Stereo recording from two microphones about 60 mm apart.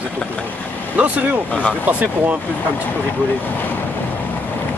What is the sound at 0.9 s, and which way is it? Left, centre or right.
Speech, right.